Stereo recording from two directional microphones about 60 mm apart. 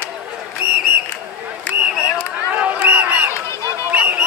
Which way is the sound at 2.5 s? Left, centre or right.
Right.